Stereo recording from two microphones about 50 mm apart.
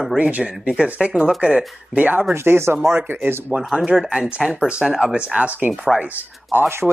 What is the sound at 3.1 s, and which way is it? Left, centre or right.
Speech, right.